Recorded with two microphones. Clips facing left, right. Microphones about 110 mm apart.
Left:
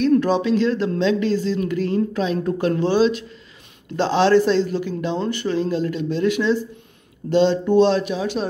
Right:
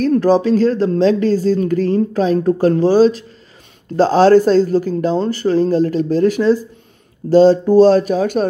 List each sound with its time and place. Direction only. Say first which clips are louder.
0.0 s speech: right 4 dB; 40° right (ahead or behind)